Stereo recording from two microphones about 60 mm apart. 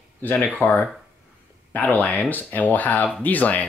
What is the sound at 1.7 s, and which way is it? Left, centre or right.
Speech, left.